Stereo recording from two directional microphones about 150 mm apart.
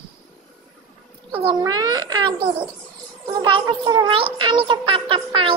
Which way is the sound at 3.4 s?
30° right (ahead or behind).